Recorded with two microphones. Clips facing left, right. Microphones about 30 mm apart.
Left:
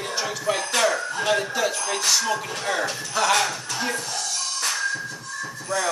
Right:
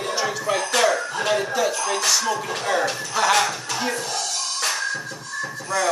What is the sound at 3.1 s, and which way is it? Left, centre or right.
Speech, centre.